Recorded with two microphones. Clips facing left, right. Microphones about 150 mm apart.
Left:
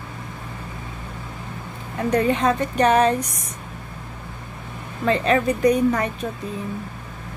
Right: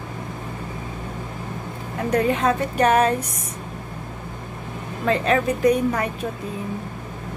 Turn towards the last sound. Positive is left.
turn(degrees=-5)  # may be behind; listen again after turning